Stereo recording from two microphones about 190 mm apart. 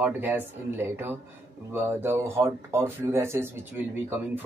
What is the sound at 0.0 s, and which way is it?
Speech, 10° right (ahead or behind).